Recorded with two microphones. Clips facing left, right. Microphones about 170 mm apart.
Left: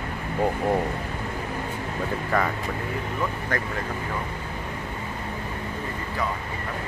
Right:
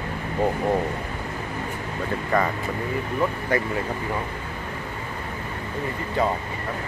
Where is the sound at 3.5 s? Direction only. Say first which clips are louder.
Right 6 dB; 10° right (ahead or behind).